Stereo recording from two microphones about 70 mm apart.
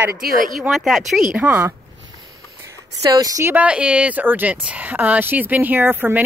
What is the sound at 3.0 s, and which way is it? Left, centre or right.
Speech, right.